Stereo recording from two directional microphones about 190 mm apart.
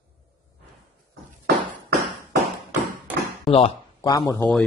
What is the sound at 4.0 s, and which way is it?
Speech, 20° left (ahead or behind).